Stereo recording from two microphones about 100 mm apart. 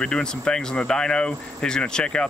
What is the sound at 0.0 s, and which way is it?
Speech, 10° left (ahead or behind).